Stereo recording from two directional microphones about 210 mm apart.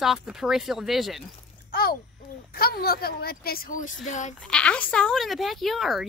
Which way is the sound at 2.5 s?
45° left (ahead or behind).